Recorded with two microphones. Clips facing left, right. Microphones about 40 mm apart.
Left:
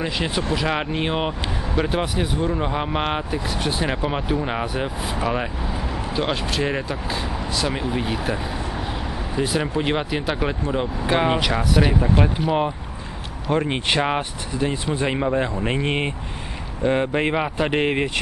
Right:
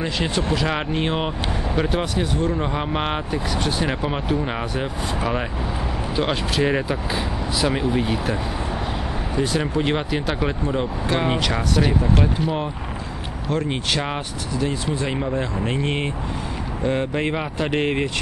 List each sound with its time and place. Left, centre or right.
0.0 s speech: centre
9.4 s speech: centre